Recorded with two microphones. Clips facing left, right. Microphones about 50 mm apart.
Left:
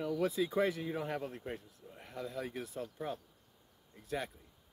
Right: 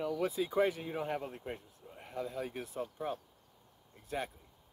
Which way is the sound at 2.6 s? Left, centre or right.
Right.